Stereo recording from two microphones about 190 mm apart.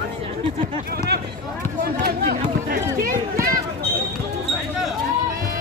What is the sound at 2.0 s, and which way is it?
Run, 55° right (ahead or behind).